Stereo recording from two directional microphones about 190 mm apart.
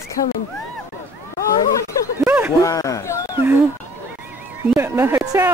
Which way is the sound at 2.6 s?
15° left (ahead or behind).